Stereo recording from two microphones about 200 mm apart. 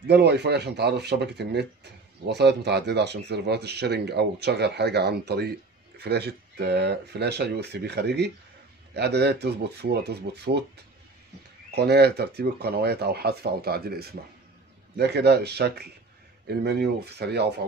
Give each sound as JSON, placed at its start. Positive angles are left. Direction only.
{"t": 0.0, "sound": "speech", "side_deg": -55}
{"t": 11.7, "sound": "speech", "side_deg": -55}